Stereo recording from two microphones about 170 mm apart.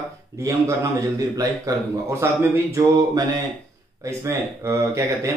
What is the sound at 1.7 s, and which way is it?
Speech, 20° right (ahead or behind).